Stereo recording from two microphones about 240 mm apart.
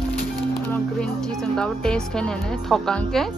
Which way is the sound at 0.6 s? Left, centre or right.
Centre.